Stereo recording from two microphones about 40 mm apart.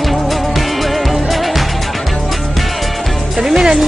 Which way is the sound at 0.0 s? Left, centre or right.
Centre.